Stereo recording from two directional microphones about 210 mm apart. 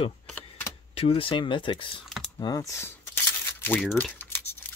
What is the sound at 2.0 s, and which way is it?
Typing, centre (ahead or behind).